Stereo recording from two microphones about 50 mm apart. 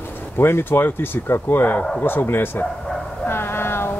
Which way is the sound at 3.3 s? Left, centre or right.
Left.